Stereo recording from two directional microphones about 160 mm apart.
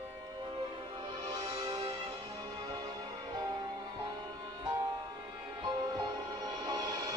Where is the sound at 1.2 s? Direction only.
25° right (ahead or behind).